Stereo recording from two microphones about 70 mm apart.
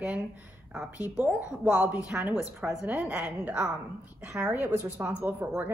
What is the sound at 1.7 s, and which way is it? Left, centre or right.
A woman's voice, right.